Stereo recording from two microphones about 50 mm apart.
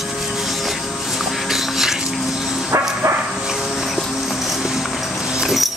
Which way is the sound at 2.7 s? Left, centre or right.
Right.